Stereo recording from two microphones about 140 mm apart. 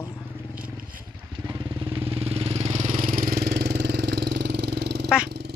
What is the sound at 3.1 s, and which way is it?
Vehicle, 90° right.